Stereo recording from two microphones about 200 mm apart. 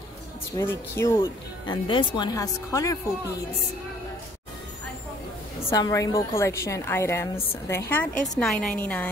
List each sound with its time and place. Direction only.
0.6 s speech: 15° left (ahead or behind)
5.7 s speech: 15° left (ahead or behind)